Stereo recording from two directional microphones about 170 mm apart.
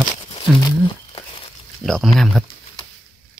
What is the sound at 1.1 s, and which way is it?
Crumpling, 30° left (ahead or behind).